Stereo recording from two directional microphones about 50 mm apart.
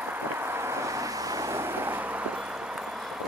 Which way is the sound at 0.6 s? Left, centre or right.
Right.